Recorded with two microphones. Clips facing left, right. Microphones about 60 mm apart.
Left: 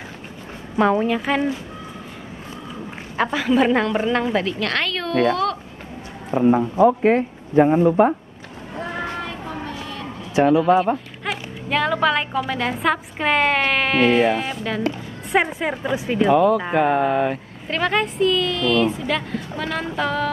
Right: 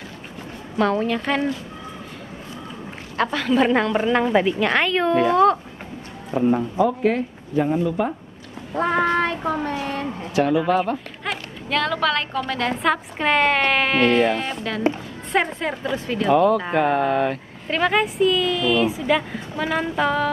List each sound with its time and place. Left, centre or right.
0.7 s a woman's voice: centre
3.2 s a woman's voice: centre
6.3 s speech: left
8.7 s a sound: right
10.3 s speech: left
11.2 s a woman's voice: centre